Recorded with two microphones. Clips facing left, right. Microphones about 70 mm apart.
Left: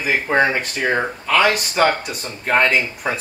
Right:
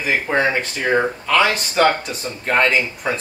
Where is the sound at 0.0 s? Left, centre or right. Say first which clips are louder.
Left 1 dB; centre.